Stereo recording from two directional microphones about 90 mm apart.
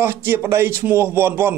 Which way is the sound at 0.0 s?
30° right (ahead or behind).